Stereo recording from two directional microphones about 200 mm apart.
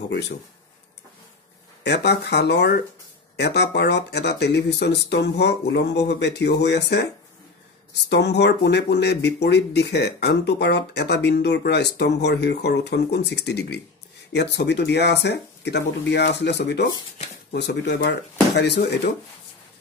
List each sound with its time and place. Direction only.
1.8 s speech: 55° left (ahead or behind)
8.1 s speech: 60° left (ahead or behind)